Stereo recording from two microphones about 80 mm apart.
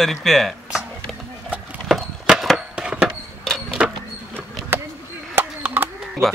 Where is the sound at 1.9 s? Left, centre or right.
Centre.